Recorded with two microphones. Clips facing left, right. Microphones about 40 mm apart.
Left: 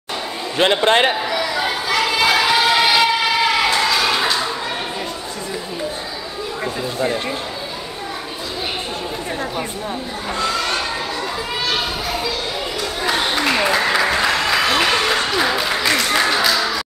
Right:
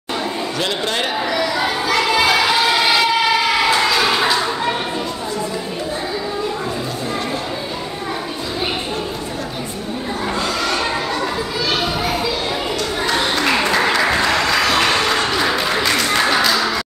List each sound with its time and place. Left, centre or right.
0.6 s a man's voice: left
1.3 s a sound: centre
13.0 s applause: centre